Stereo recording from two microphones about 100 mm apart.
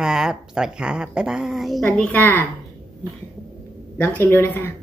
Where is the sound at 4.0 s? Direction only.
20° left (ahead or behind).